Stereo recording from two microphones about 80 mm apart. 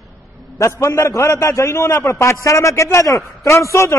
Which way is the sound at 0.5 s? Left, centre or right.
Left.